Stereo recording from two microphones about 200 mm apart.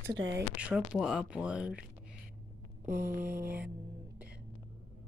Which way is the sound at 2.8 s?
45° right (ahead or behind).